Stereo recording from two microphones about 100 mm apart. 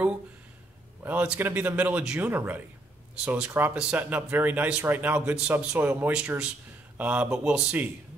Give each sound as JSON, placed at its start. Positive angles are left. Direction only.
{"t": 1.0, "sound": "speech", "side_deg": -15}